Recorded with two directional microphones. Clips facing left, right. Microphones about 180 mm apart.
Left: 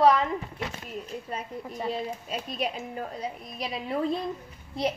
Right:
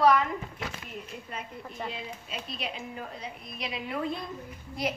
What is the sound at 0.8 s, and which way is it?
A woman's voice, 40° left (ahead or behind).